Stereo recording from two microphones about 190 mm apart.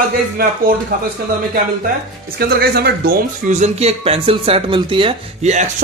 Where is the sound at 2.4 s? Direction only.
55° right (ahead or behind).